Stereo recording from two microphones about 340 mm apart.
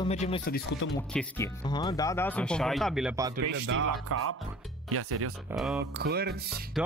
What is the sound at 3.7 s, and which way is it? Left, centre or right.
Speech, right.